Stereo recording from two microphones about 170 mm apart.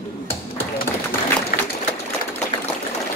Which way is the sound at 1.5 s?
55° left (ahead or behind).